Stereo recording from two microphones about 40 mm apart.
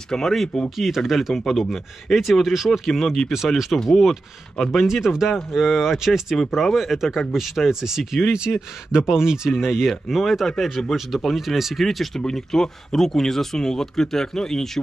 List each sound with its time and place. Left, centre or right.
0.1 s speech: centre
1.3 s speech: centre
3.7 s speech: centre
4.8 s speech: centre
9.8 s speech: centre
12.2 s speech: centre